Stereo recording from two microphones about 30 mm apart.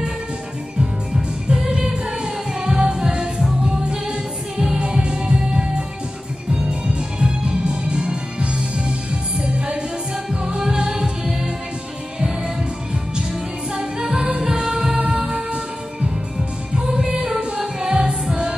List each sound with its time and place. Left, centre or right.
0.7 s music: right
13.3 s music: right
16.3 s music: centre